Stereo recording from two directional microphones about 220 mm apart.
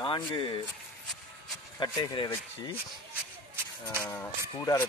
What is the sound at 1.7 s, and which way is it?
Speech, 20° left (ahead or behind).